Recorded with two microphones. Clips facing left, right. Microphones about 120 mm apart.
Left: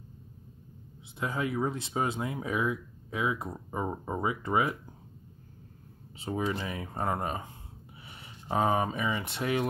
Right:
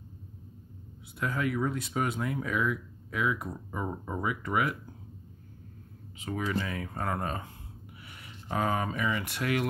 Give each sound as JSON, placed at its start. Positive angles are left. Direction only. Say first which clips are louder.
{"t": 1.2, "sound": "speech", "louder": "even", "side_deg": 25}
{"t": 6.1, "sound": "speech", "louder": "even", "side_deg": 25}